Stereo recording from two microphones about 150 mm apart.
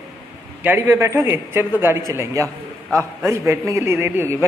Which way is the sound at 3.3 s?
20° right (ahead or behind).